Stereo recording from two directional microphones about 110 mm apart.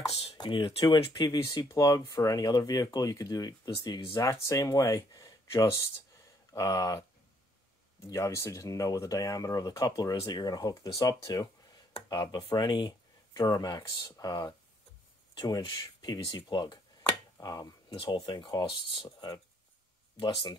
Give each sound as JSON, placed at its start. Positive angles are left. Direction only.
{"t": 0.4, "sound": "speech", "side_deg": 50}
{"t": 8.0, "sound": "speech", "side_deg": 25}
{"t": 17.4, "sound": "a sound", "side_deg": 35}
{"t": 17.9, "sound": "speech", "side_deg": 55}